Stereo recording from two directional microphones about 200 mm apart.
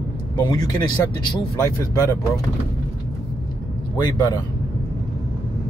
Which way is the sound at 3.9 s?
20° left (ahead or behind).